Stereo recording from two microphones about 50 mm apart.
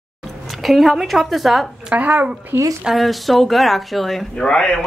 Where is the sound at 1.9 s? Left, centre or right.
Right.